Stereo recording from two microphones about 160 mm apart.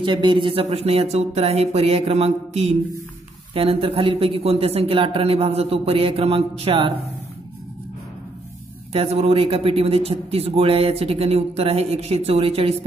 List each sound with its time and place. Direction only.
0.0 s a man's voice: 30° right (ahead or behind)
8.9 s a man's voice: 40° right (ahead or behind)